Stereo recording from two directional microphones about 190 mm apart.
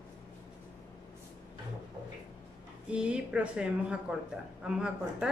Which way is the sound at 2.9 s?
5° right (ahead or behind).